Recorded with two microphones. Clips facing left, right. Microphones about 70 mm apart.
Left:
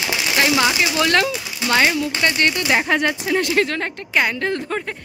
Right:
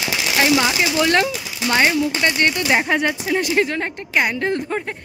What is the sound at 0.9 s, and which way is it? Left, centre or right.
A woman's voice, centre.